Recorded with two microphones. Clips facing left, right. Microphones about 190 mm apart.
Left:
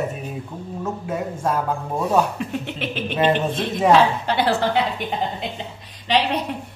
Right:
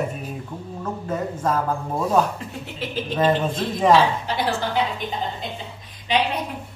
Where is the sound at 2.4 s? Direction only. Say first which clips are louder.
Left 5 dB; 70° left (ahead or behind).